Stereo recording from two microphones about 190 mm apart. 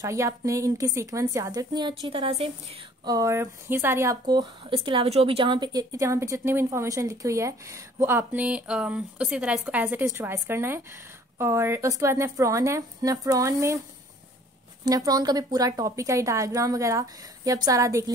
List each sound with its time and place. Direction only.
0.0 s speech: 15° right (ahead or behind)
3.1 s speech: 15° right (ahead or behind)
14.9 s a woman's voice: 20° right (ahead or behind)